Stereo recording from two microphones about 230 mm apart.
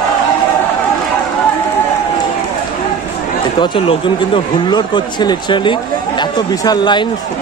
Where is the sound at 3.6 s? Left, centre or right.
Left.